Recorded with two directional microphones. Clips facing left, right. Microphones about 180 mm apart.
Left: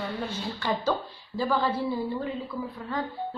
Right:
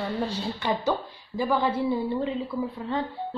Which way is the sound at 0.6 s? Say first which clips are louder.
Right 1 dB; 20° right (ahead or behind).